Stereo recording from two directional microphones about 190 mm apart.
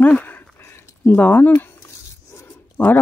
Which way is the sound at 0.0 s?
10° left (ahead or behind).